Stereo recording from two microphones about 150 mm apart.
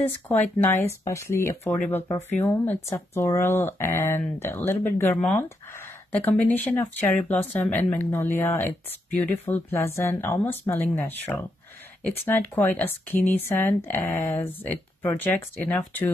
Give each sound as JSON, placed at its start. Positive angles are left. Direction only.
{"t": 0.0, "sound": "speech", "side_deg": 10}